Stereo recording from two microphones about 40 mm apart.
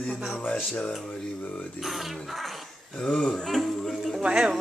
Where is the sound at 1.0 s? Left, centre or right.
Left.